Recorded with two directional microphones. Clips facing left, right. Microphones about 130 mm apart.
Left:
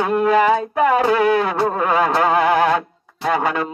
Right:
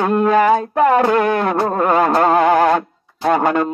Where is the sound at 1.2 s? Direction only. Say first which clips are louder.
Even; 50° right (ahead or behind).